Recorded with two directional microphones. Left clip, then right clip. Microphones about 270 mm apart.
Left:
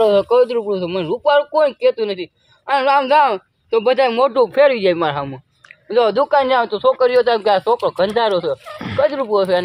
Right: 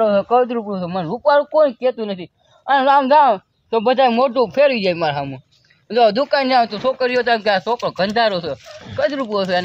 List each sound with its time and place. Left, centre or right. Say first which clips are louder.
0.0 s speech: left 2 dB; left; by 9.6 s centre